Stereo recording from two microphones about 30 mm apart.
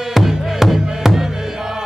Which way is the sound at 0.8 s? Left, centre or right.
Right.